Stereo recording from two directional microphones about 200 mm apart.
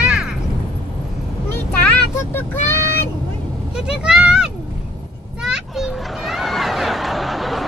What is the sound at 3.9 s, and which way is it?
Speech, 5° right (ahead or behind).